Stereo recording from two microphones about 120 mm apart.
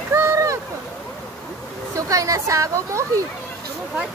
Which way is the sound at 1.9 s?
25° right (ahead or behind).